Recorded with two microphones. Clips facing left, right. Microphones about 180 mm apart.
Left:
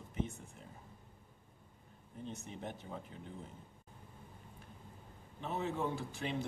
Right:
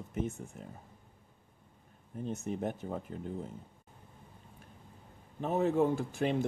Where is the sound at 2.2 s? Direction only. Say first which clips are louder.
Right 9 dB; 45° right (ahead or behind).